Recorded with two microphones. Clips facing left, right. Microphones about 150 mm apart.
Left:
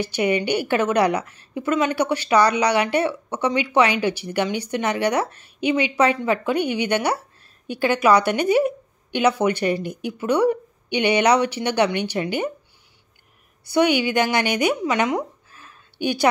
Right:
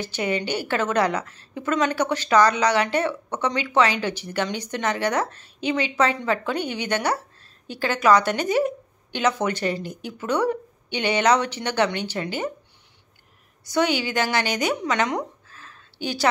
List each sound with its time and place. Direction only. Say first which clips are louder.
0.0 s a woman's voice: left 4 dB; 15° left (ahead or behind)
13.7 s a woman's voice: left 4 dB; 15° left (ahead or behind)